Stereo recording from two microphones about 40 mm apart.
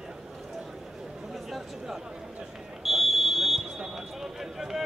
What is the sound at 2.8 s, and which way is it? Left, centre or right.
Fire alarm, centre.